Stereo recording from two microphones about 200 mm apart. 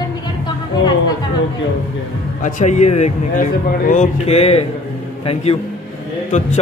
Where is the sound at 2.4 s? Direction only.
40° left (ahead or behind).